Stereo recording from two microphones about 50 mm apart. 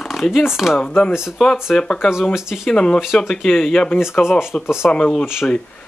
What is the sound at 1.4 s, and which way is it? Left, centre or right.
Speech, centre.